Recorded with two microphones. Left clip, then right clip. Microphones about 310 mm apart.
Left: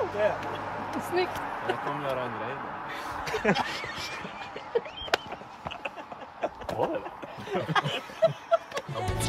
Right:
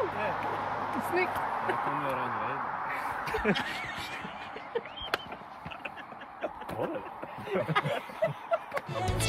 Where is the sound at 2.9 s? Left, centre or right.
Left.